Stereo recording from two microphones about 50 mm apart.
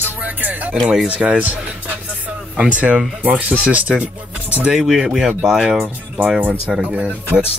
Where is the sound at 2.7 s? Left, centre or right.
Right.